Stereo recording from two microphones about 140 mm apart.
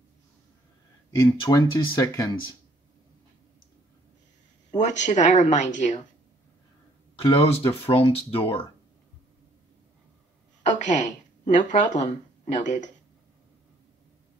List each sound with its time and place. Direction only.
1.5 s speech: 25° left (ahead or behind)
4.6 s speech: 55° left (ahead or behind)
7.2 s speech: 40° left (ahead or behind)
10.6 s speech: 60° left (ahead or behind)